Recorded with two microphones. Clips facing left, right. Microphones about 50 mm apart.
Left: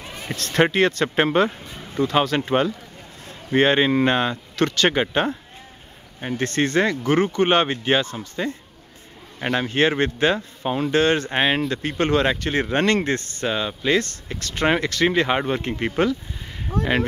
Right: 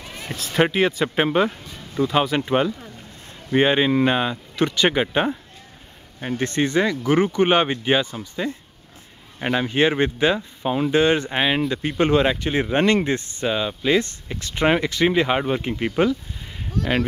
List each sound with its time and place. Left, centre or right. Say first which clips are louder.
0.1 s speech: left 1 dB; centre
4.6 s speech: even; centre
9.4 s speech: right 1 dB; centre
9.7 s speech: right 1 dB; centre
10.3 s speech: right 1 dB; centre
10.9 s speech: right 1 dB; centre
11.3 s speech: even; centre
12.0 s speech: right 2 dB; centre
13.5 s speech: right 1 dB; centre
14.4 s speech: right 1 dB; centre
15.0 s speech: right 1 dB; centre
16.0 s speech: right 1 dB; centre
16.7 s speech: left 2 dB; left